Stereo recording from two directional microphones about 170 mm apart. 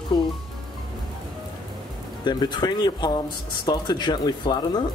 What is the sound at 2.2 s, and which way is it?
Speech, 25° left (ahead or behind).